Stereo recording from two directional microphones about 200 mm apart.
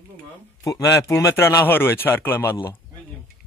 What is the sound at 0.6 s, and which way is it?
Speech, 15° left (ahead or behind).